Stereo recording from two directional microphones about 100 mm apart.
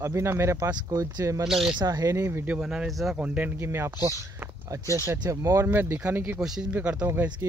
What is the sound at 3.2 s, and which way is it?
Speech, 15° right (ahead or behind).